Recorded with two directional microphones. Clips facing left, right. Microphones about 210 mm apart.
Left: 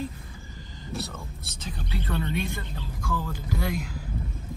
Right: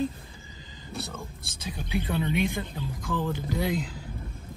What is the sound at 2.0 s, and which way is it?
Speech, 15° right (ahead or behind).